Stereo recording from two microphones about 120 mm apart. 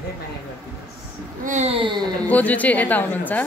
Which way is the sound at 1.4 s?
80° right.